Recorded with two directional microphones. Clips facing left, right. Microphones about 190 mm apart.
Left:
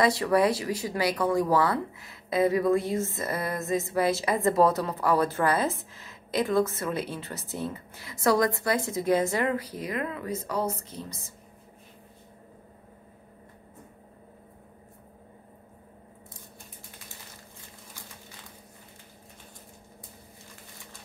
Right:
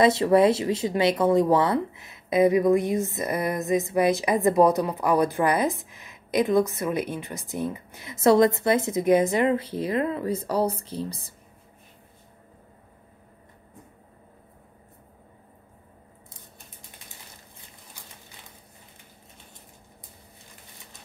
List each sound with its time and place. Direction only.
0.0 s speech: 25° right (ahead or behind)